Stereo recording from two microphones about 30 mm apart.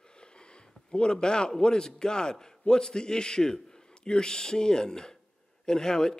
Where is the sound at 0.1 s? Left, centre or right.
Left.